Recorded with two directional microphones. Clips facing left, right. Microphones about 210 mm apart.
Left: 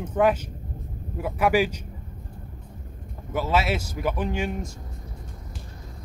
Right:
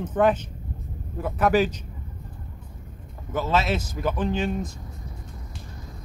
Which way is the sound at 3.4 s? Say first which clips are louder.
Even; 10° left (ahead or behind).